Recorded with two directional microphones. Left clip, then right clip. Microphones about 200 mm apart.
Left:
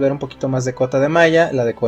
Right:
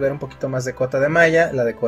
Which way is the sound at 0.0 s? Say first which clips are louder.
Left 3 dB; 25° left (ahead or behind).